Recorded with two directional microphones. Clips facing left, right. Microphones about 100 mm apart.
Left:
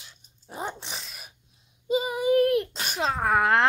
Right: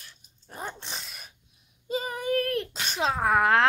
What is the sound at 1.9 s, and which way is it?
Child singing, 10° left (ahead or behind).